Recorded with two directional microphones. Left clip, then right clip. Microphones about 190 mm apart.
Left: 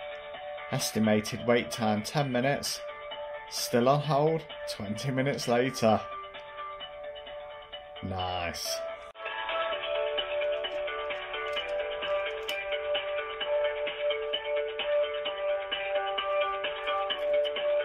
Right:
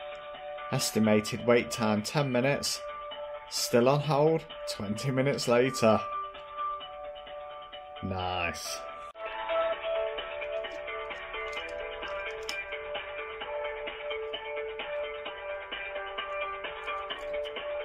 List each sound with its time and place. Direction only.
0.7 s speech: 5° right (ahead or behind)
3.7 s speech: 5° right (ahead or behind)
8.1 s speech: centre (ahead or behind)
9.5 s music: 55° left (ahead or behind)